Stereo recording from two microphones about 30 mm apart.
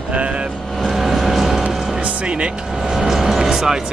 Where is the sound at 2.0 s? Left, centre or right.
Right.